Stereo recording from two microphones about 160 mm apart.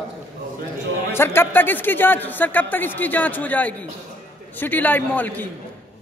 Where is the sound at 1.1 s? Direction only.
15° left (ahead or behind).